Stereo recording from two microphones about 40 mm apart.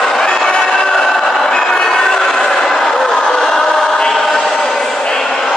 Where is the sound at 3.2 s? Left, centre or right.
Centre.